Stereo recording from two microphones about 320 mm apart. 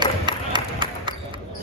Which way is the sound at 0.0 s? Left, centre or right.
Centre.